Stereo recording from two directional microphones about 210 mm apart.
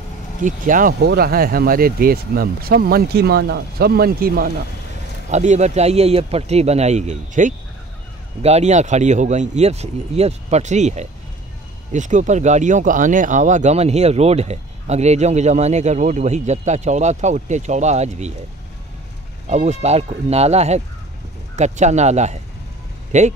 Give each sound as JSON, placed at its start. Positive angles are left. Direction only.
{"t": 0.4, "sound": "speech", "side_deg": -40}
{"t": 5.3, "sound": "speech", "side_deg": -35}
{"t": 19.5, "sound": "speech", "side_deg": -30}